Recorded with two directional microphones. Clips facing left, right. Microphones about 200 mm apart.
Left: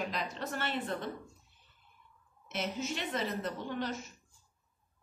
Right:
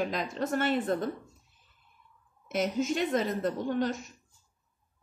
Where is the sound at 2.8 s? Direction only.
45° right (ahead or behind).